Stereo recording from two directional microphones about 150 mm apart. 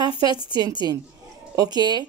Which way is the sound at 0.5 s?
30° right (ahead or behind).